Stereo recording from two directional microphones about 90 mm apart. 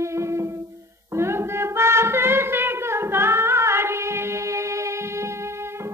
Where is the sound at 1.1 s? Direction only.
30° right (ahead or behind).